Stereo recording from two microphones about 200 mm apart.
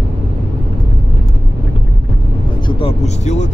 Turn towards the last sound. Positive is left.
turn(degrees=35)  # may be behind; listen again after turning